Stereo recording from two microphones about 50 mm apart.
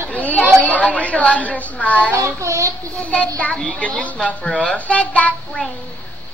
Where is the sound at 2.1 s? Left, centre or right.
Right.